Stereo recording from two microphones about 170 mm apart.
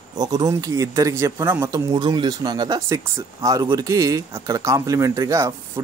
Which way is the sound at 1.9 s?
25° right (ahead or behind).